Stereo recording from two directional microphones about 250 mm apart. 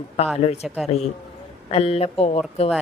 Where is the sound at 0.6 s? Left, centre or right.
Centre.